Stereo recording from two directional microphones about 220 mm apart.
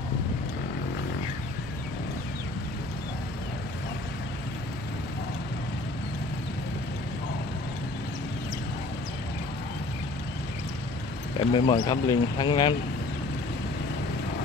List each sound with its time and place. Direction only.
11.3 s speech: 20° left (ahead or behind)